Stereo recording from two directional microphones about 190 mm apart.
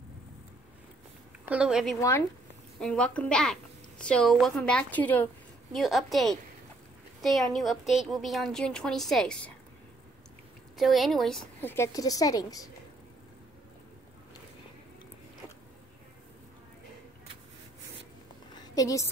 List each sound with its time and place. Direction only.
1.5 s a woman's voice: 5° right (ahead or behind)
2.0 s a woman's voice: 15° left (ahead or behind)
2.8 s a woman's voice: 5° left (ahead or behind)
10.8 s a woman's voice: centre (ahead or behind); by 12.6 s 20° left (ahead or behind)
18.5 s a sound: 20° left (ahead or behind)